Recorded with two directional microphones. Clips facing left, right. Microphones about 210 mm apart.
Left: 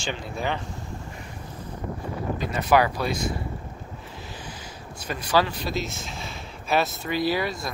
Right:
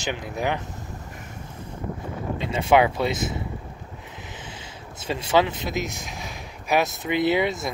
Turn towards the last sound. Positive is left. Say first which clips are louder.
# right 4 dB
turn(degrees=-20)  # may be behind; listen again after turning